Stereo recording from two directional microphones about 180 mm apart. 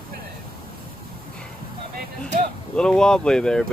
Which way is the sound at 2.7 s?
5° left (ahead or behind).